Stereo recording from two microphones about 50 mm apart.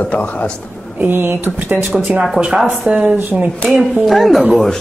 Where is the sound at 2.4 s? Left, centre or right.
Centre.